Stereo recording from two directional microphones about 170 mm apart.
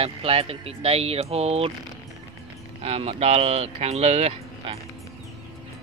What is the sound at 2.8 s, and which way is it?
Speech, 35° right (ahead or behind).